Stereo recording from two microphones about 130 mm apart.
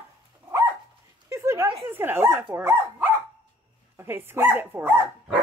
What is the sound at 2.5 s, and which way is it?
Dog, 20° right (ahead or behind).